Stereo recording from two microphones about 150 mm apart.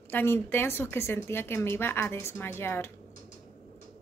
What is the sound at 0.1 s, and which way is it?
A woman's voice, 15° left (ahead or behind).